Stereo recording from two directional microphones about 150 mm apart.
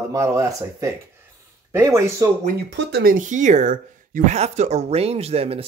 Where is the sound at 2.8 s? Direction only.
85° right.